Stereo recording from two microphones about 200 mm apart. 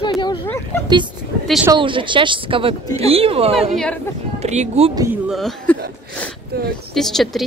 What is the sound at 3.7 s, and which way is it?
Speech, 5° left (ahead or behind).